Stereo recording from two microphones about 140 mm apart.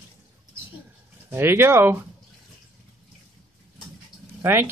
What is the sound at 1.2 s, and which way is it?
Speech, 15° right (ahead or behind).